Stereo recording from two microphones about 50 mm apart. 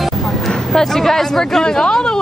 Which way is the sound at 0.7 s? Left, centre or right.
Centre.